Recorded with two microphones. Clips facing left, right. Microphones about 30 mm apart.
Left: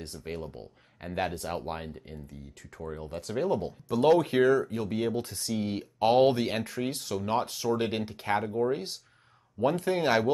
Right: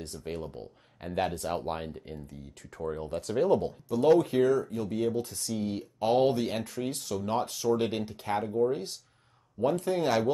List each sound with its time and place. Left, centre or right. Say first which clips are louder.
0.2 s speech: right 1 dB; centre
4.2 s speech: left 1 dB; left